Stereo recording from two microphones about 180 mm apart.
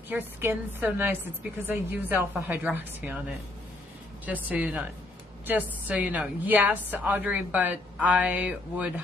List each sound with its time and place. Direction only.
0.1 s a woman's voice: 10° right (ahead or behind)
4.3 s a woman's voice: 10° right (ahead or behind)